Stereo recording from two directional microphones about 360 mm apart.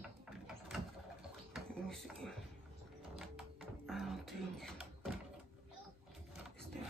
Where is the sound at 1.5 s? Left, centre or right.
Centre.